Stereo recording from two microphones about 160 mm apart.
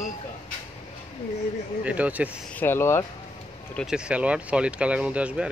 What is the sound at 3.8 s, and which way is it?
Speech, 5° right (ahead or behind).